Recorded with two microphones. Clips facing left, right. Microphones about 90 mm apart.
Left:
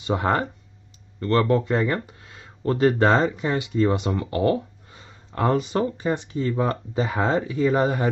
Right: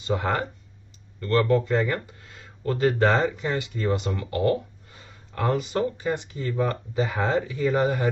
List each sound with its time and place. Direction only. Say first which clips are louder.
0.0 s speech: left 3 dB; 25° left (ahead or behind)